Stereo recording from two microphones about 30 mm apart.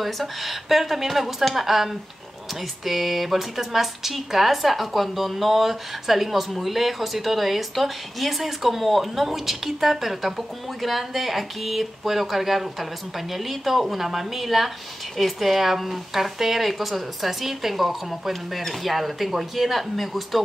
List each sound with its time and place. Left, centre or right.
0.0 s speech: centre